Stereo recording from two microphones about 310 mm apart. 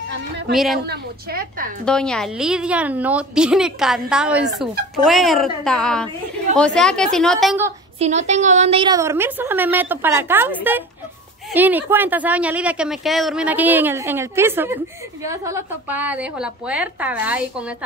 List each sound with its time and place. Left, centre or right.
0.1 s a woman's voice: right
1.9 s speech: centre
8.0 s a woman's voice: right; by 17.7 s centre